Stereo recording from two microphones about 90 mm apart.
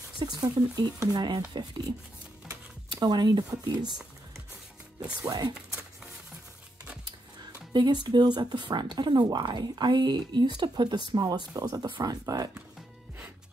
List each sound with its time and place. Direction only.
0.2 s speech: 50° right (ahead or behind)
5.2 s speech: 50° right (ahead or behind)
7.7 s a woman's voice: 55° right (ahead or behind)